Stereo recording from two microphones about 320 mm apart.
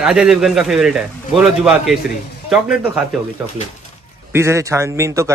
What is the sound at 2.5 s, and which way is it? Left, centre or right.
Speech, centre.